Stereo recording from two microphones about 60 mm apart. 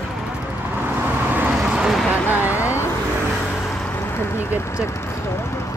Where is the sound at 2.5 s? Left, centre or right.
Left.